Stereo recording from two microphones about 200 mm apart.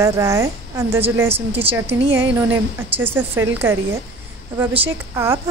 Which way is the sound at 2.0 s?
65° right (ahead or behind).